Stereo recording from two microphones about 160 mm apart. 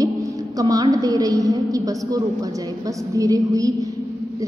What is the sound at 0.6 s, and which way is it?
A woman's voice, 20° right (ahead or behind).